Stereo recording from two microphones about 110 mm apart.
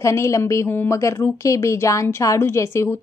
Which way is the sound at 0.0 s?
25° left (ahead or behind).